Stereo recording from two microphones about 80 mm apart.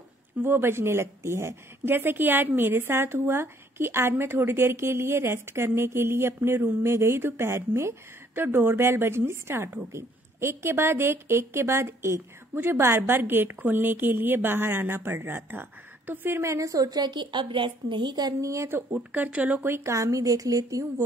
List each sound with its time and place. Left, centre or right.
0.4 s a woman's voice: right
18.4 s a woman's voice: right
18.9 s a woman's voice: centre
19.7 s a woman's voice: right